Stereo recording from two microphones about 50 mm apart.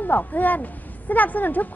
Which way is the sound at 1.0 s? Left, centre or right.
Left.